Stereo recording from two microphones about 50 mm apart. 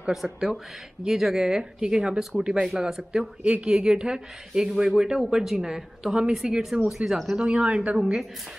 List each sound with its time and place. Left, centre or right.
0.1 s speech: centre
7.4 s speech: centre